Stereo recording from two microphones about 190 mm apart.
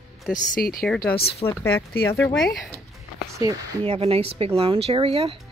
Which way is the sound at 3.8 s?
30° right (ahead or behind).